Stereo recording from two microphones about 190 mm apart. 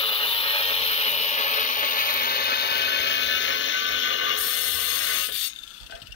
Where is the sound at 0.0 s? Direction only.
30° left (ahead or behind); by 5.9 s 90° left.